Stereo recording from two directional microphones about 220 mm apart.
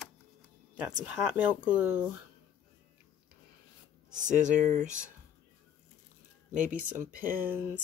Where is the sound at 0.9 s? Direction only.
5° right (ahead or behind).